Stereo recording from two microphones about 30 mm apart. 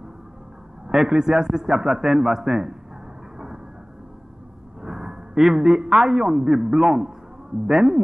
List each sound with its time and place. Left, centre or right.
0.9 s a man's voice: centre
4.8 s a sound: right
5.4 s a man's voice: centre